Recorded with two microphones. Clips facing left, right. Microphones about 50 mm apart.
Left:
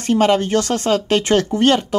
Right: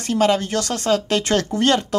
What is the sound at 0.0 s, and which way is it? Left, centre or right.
Speech, left.